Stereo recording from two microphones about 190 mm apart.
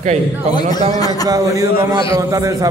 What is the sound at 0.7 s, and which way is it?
Speech, 20° left (ahead or behind).